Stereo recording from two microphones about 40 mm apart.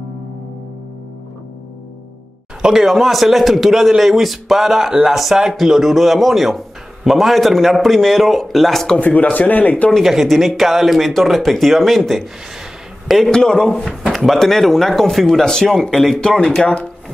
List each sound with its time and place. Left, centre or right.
2.6 s a man's voice: centre
9.0 s speech: left
10.0 s a man's voice: centre
13.3 s speech: centre
16.2 s speech: left